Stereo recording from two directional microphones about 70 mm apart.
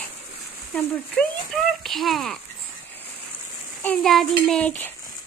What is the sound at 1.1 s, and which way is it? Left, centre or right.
Speech, centre.